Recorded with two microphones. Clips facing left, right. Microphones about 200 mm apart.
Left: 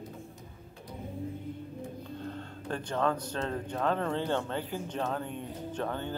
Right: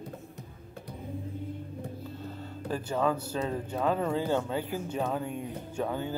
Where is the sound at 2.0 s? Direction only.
5° right (ahead or behind).